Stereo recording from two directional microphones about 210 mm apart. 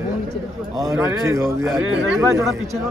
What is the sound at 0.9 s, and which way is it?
A man's voice, 10° right (ahead or behind).